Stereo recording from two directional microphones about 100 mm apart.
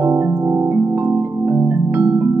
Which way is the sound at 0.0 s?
25° right (ahead or behind).